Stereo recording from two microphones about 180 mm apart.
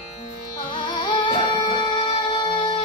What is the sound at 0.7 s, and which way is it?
Music, 25° left (ahead or behind).